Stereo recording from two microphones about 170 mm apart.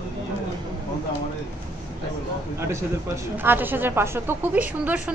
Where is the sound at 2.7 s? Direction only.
15° right (ahead or behind).